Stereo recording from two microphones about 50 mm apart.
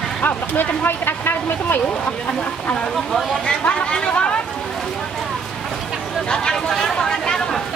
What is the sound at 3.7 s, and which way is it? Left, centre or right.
Chatter, left.